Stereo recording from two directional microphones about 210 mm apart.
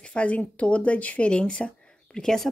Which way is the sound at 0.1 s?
5° left (ahead or behind).